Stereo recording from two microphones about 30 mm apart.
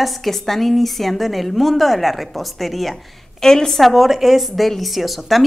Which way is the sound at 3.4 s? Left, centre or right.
Centre.